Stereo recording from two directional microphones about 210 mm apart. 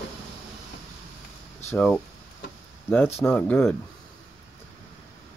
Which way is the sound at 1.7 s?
5° left (ahead or behind).